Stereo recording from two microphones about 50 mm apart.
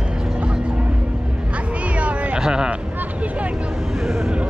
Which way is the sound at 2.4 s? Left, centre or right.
Centre.